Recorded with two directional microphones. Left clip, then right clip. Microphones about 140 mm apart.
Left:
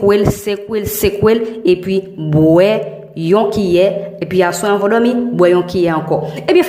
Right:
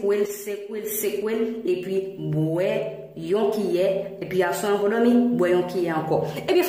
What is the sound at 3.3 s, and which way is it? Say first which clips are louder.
A woman's voice: left 10 dB; 25° left (ahead or behind).